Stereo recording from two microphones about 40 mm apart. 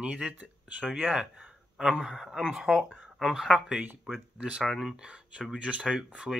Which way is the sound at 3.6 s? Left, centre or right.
Right.